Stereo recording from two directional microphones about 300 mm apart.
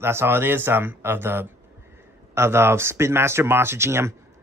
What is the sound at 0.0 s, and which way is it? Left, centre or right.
Speech, centre.